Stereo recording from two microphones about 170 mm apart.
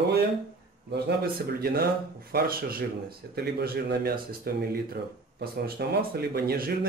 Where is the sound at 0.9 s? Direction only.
65° right (ahead or behind).